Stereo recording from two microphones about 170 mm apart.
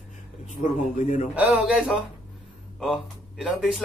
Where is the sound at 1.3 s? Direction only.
5° right (ahead or behind).